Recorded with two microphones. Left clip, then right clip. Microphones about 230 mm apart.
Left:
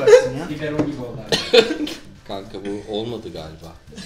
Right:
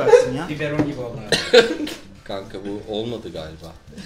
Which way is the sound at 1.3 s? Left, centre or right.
Centre.